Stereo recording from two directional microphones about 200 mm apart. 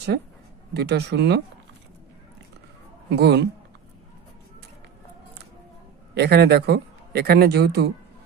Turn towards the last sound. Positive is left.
turn(degrees=-55)  # may be behind; listen again after turning